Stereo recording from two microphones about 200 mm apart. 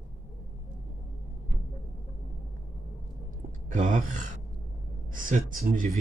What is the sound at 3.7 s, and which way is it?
Speech, 40° right (ahead or behind).